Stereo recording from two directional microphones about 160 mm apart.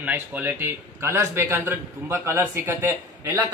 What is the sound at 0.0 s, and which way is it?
A man's voice, 10° right (ahead or behind).